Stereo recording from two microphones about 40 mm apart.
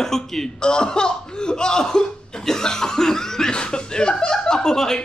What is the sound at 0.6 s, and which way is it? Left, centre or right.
Cough, left.